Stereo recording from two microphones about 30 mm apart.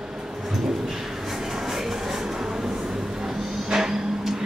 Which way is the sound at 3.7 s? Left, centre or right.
Centre.